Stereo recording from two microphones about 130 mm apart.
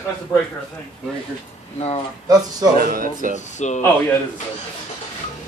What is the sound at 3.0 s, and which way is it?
Speech, 90° right.